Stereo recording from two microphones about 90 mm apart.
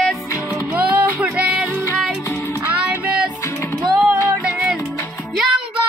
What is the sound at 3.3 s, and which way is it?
Music, 30° left (ahead or behind).